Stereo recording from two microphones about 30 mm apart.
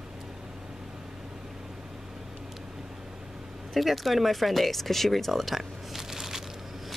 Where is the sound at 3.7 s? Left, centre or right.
Centre.